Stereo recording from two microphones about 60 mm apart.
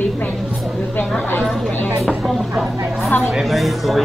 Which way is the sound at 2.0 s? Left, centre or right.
Centre.